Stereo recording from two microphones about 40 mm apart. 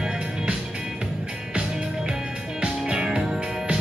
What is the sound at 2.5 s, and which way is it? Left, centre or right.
Music, right.